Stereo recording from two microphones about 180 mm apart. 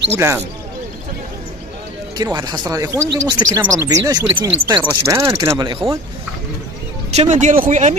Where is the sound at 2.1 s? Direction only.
20° right (ahead or behind).